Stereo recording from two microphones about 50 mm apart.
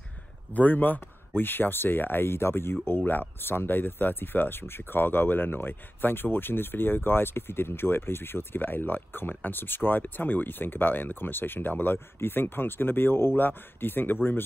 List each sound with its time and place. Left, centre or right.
0.5 s speech: left